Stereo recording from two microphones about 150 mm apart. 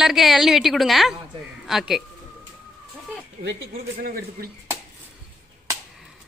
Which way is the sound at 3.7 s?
85° right.